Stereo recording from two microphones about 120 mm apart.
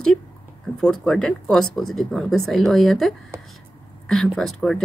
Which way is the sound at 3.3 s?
20° right (ahead or behind).